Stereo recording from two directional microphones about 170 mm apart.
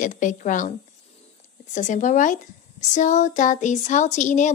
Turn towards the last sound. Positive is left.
turn(degrees=45)  # may be behind; listen again after turning